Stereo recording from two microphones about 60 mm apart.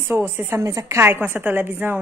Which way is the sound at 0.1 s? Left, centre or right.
Right.